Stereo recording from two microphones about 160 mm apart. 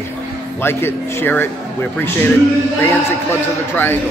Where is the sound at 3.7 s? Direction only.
15° left (ahead or behind).